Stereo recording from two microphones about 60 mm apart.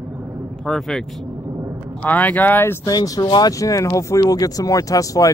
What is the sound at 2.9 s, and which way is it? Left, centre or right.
Speech, left.